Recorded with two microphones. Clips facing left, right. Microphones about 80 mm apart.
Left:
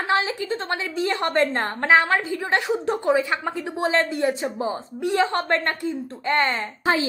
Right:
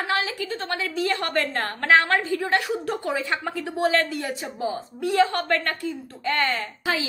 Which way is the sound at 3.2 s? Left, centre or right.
Centre.